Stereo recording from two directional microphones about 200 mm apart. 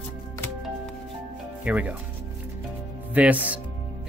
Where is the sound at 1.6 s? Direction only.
5° right (ahead or behind).